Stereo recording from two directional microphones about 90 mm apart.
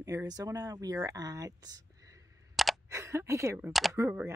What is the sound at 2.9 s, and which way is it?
Speech, 30° right (ahead or behind).